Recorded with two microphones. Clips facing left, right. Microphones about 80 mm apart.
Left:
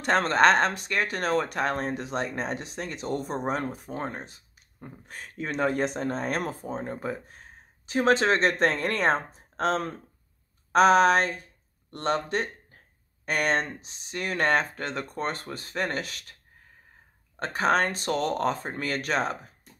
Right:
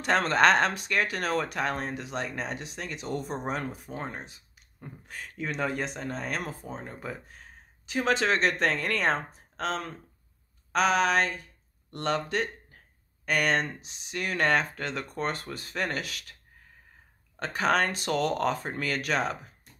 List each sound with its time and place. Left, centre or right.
0.0 s speech: left
4.7 s speech: centre
5.0 s speech: left
17.4 s speech: left